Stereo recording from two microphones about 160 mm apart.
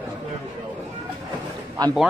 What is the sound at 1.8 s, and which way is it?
Speech, 25° right (ahead or behind).